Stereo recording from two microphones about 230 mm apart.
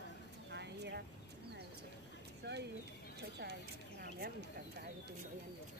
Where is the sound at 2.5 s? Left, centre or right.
Right.